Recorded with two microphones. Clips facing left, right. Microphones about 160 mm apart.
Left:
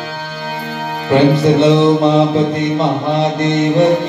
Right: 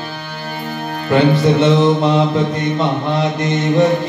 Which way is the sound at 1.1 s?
30° left (ahead or behind).